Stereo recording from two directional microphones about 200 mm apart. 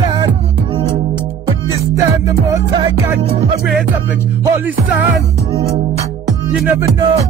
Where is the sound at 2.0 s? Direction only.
15° right (ahead or behind).